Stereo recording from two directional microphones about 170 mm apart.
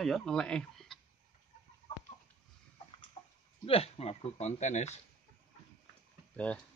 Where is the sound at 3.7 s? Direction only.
35° left (ahead or behind).